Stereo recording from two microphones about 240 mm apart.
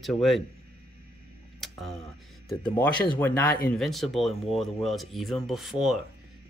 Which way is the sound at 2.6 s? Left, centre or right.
Centre.